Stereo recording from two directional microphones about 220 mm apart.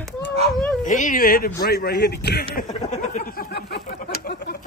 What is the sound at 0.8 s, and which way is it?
Speech, 35° left (ahead or behind).